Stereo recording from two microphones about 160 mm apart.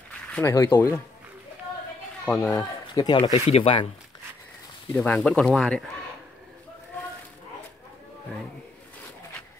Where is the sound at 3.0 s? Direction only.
25° left (ahead or behind).